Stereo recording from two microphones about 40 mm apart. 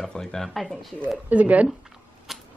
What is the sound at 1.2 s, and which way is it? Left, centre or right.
Speech, right.